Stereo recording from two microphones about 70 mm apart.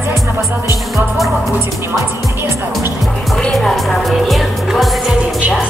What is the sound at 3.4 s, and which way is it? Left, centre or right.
Music, centre.